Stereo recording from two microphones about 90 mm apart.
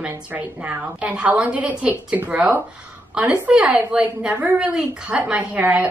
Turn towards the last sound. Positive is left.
turn(degrees=-15)  # may be behind; listen again after turning